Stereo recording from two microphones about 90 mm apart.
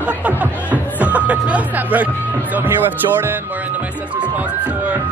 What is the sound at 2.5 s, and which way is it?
Speech, 20° right (ahead or behind).